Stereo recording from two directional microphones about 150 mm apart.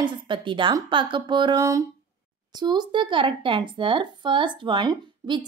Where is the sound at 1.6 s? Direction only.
20° right (ahead or behind).